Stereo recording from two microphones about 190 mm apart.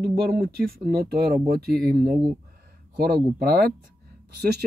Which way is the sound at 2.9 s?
55° right (ahead or behind).